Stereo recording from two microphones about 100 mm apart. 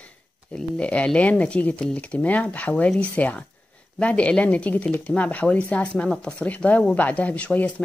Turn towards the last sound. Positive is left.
turn(degrees=15)  # may be behind; listen again after turning